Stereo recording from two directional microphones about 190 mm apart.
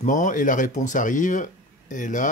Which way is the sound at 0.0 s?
40° left (ahead or behind).